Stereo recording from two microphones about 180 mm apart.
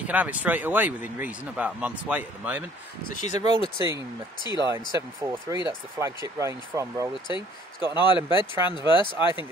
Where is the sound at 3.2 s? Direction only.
40° left (ahead or behind).